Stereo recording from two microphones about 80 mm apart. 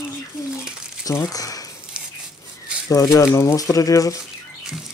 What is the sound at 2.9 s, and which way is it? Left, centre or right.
Speech, left.